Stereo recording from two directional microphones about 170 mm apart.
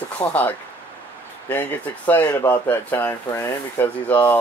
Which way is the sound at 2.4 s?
10° left (ahead or behind).